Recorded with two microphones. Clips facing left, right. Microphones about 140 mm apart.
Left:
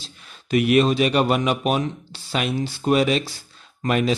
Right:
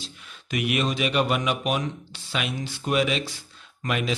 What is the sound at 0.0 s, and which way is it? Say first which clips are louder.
Speech: right 2 dB; 35° left (ahead or behind).